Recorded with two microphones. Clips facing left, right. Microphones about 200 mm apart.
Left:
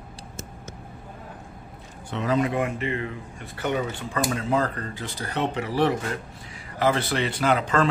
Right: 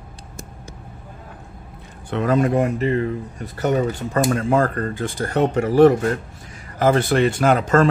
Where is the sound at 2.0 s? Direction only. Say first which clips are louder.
Right 5 dB; 55° right (ahead or behind).